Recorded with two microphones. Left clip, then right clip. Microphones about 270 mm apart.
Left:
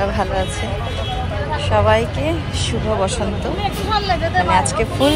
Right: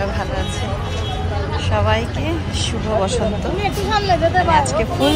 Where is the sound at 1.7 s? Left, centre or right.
Centre.